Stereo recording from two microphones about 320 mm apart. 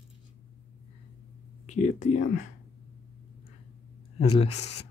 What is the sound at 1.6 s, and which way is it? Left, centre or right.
Speech, left.